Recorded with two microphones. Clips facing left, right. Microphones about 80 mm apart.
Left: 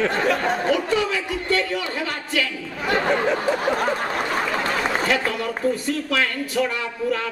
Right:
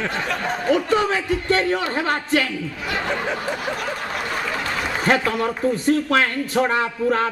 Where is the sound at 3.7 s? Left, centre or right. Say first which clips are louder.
Left 4 dB; left.